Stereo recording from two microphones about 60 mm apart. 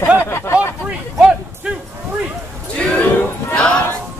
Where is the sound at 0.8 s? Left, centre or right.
Centre.